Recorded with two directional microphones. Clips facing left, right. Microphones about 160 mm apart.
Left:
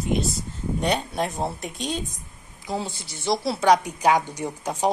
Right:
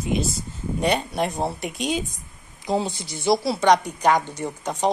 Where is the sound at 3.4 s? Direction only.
Centre (ahead or behind).